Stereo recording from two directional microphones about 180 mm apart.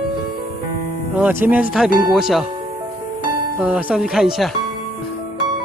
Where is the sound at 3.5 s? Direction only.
5° right (ahead or behind).